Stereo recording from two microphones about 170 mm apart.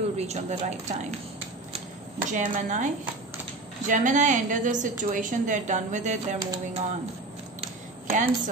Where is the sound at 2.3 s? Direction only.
45° right (ahead or behind).